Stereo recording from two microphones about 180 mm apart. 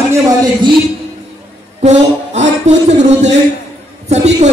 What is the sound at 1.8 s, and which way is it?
Music, 40° right (ahead or behind).